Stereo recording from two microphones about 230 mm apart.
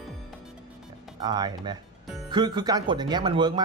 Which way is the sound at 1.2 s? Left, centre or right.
Centre.